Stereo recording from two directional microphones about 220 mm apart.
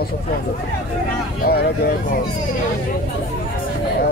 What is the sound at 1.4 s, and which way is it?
Speech, 45° left (ahead or behind).